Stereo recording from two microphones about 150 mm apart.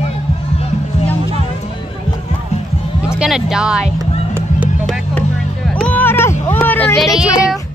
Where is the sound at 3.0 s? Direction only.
5° right (ahead or behind).